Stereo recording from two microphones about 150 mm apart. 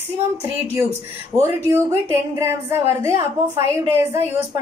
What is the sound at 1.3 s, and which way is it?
Speech, 20° right (ahead or behind).